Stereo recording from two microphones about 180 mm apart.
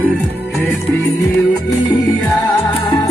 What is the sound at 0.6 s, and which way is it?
Music, 10° left (ahead or behind).